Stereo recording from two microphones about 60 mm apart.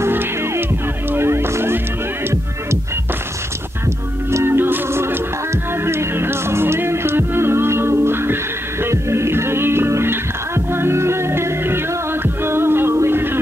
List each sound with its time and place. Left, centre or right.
0.0 s music: right
4.3 s music: right
4.6 s music: right